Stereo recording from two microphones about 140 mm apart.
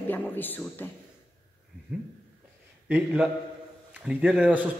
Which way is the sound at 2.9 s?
5° right (ahead or behind).